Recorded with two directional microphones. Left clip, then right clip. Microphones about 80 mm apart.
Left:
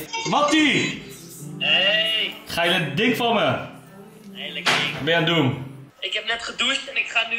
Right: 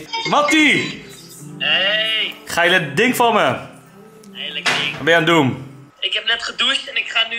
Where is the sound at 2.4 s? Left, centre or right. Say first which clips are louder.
Right 8 dB; right.